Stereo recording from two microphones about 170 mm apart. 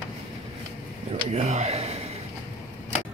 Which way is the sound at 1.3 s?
40° right (ahead or behind).